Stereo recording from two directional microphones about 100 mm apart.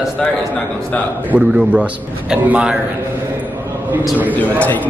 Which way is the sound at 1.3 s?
10° right (ahead or behind).